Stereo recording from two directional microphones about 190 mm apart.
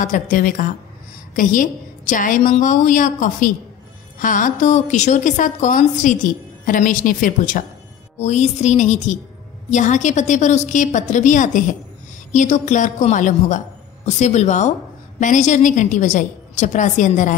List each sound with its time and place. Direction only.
0.0 s a woman's voice: 45° left (ahead or behind)